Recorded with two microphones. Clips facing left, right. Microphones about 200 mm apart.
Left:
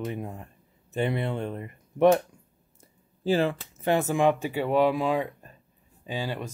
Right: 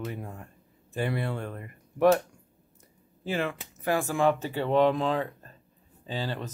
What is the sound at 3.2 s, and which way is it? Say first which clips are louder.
Speech: left 6 dB; 30° left (ahead or behind).